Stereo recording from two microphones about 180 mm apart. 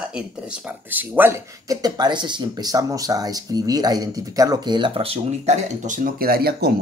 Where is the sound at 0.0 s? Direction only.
5° right (ahead or behind).